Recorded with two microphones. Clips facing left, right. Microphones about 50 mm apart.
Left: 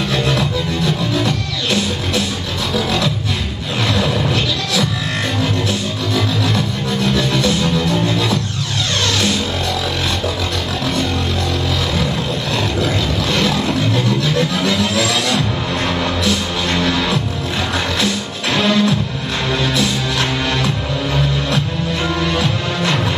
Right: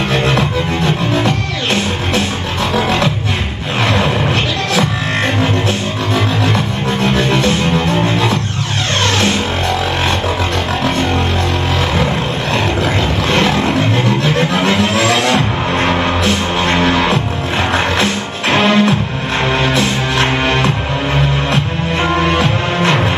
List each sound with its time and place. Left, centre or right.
0.1 s music: right
3.8 s a sound: right
7.0 s music: right
12.8 s music: right
22.0 s music: right